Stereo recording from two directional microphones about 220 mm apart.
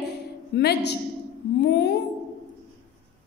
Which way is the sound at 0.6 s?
45° left (ahead or behind).